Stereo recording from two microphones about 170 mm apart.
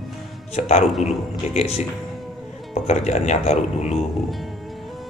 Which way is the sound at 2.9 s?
40° left (ahead or behind).